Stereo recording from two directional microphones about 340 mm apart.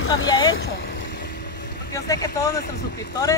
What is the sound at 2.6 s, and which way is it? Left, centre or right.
Speech, left.